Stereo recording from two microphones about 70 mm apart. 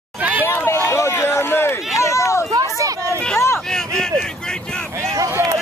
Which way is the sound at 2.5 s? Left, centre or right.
Right.